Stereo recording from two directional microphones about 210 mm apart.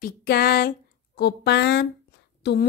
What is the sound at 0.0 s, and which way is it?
A woman's voice, 45° left (ahead or behind).